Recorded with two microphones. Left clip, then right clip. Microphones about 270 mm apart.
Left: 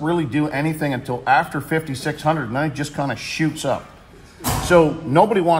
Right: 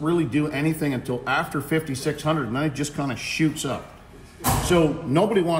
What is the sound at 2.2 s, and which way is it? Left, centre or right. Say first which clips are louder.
A man's voice: left 6 dB; left.